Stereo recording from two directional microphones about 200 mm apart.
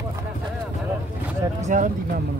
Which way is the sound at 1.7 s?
40° right (ahead or behind).